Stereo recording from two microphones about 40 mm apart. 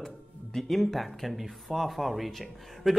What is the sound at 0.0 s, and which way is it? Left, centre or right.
Music, centre.